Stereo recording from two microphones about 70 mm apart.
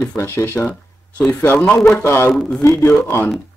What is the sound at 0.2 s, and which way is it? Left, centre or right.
Speech, left.